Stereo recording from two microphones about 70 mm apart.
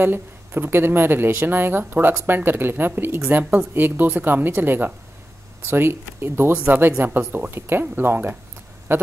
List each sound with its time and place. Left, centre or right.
0.0 s speech: right
6.5 s speech: centre